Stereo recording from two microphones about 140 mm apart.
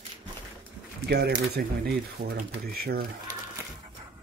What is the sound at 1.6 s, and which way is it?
Speech, 90° right.